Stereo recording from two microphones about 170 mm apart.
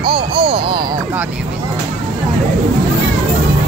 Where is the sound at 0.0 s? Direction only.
30° right (ahead or behind).